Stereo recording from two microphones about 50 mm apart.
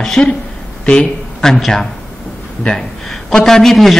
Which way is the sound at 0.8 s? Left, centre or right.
Centre.